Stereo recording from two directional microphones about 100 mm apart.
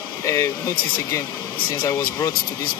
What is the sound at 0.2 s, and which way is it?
Speech, 30° left (ahead or behind).